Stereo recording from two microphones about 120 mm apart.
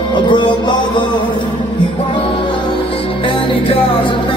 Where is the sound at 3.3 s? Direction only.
45° left (ahead or behind).